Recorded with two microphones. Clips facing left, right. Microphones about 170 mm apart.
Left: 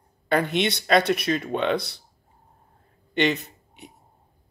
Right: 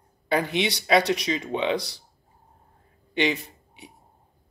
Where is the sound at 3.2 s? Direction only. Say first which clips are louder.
Left 2 dB; 10° right (ahead or behind).